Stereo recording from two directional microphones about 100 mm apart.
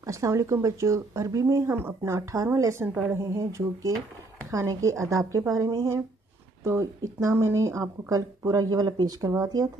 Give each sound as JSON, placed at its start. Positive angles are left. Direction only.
{"t": 0.0, "sound": "speech", "side_deg": -30}
{"t": 2.9, "sound": "a woman's voice", "side_deg": -10}
{"t": 3.2, "sound": "speech", "side_deg": -30}